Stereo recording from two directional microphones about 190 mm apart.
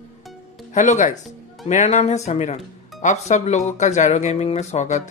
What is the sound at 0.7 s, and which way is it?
Speech, 40° left (ahead or behind).